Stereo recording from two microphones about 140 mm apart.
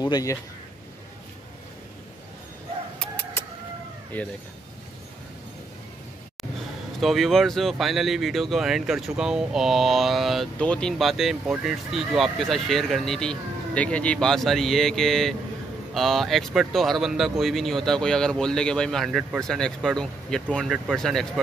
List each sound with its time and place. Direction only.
0.0 s speech: 25° left (ahead or behind)
3.0 s bird: 10° left (ahead or behind)
4.1 s speech: 10° left (ahead or behind)
7.0 s speech: centre (ahead or behind)